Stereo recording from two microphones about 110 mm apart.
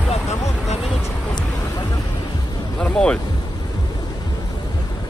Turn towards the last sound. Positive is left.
turn(degrees=10)  # may be behind; listen again after turning